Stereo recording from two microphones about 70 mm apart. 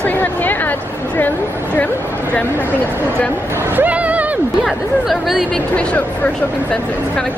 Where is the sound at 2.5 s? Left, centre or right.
Left.